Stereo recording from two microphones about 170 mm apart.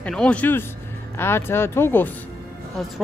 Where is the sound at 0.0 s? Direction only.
5° left (ahead or behind).